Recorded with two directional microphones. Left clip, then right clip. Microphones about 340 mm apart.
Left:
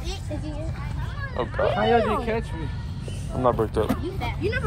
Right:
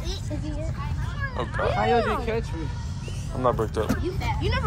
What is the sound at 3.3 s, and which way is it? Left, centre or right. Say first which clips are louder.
Speech: left 2 dB; centre.